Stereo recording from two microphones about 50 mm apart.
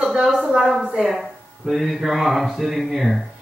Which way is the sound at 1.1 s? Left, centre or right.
Centre.